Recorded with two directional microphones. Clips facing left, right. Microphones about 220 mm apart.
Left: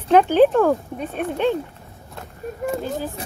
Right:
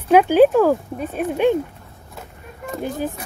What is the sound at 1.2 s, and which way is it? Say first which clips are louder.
Speech: right 4 dB; 15° right (ahead or behind).